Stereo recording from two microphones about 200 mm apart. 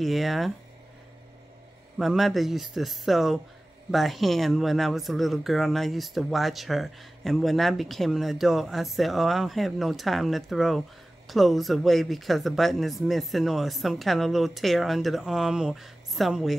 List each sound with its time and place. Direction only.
0.0 s speech: centre (ahead or behind)
2.0 s speech: centre (ahead or behind)